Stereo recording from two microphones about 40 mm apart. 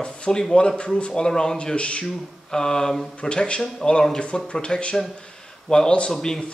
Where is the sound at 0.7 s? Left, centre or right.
Left.